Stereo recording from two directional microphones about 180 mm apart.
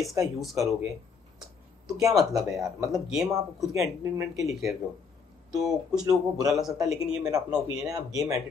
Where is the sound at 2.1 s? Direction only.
Centre (ahead or behind).